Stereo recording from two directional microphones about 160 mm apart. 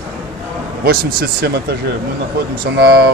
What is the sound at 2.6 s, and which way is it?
Speech, 90° right.